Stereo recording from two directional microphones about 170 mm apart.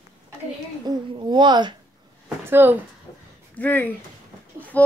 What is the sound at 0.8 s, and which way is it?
Speech, 25° right (ahead or behind).